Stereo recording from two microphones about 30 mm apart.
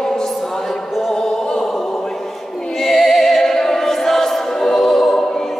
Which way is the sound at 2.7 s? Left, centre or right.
Centre.